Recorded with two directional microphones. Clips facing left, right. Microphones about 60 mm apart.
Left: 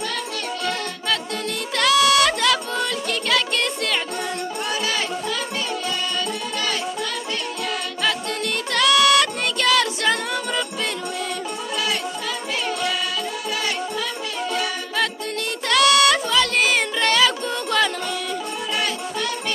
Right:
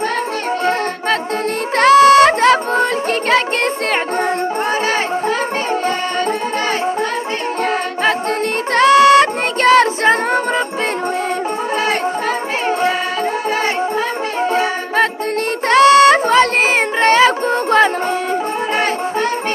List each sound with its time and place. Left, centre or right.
1.8 s music: right
8.7 s music: right
14.5 s music: right